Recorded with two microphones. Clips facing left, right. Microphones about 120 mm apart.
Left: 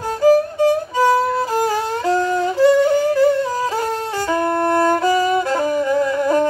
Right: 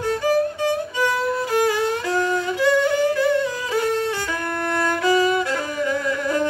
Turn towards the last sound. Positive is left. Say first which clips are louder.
# left 6 dB
turn(degrees=35)  # may be behind; listen again after turning